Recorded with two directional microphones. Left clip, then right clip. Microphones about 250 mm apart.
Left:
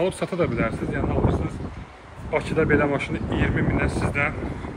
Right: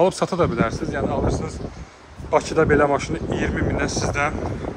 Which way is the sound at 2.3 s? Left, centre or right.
Centre.